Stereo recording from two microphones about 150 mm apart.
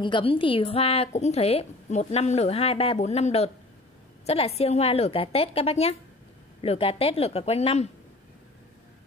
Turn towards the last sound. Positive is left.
turn(degrees=40)  # may be behind; listen again after turning